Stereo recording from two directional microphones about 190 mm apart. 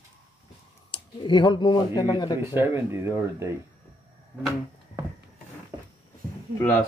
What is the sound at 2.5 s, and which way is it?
Speech, 15° right (ahead or behind).